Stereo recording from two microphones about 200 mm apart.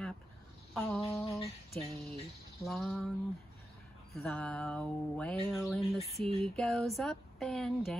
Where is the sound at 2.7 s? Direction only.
Centre (ahead or behind).